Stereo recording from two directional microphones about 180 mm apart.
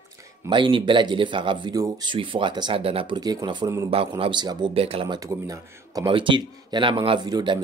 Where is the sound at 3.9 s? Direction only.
30° right (ahead or behind).